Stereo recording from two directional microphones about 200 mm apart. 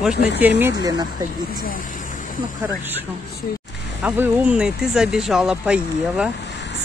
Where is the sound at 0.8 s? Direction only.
20° right (ahead or behind).